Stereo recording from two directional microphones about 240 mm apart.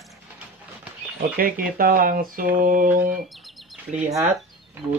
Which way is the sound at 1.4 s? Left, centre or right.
Right.